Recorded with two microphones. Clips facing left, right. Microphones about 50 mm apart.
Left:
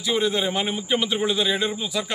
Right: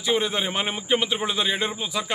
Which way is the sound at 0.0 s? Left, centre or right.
Right.